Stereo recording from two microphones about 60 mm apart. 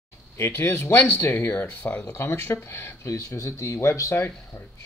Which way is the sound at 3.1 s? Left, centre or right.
Left.